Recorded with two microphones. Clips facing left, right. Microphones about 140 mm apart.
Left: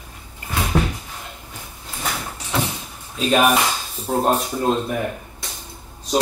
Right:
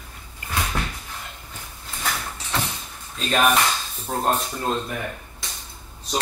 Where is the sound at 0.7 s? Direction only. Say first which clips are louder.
Left 13 dB; 15° left (ahead or behind).